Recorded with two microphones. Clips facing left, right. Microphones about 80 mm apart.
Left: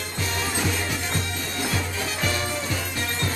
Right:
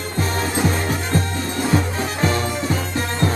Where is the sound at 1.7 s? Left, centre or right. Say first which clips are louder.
Right 9 dB; right.